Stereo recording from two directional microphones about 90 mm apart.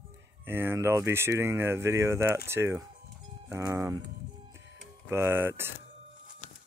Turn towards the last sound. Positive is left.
turn(degrees=-25)  # may be behind; listen again after turning